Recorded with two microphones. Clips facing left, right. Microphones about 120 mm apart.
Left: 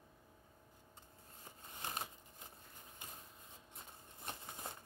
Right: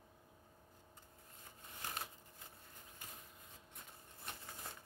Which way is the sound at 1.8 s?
20° left (ahead or behind).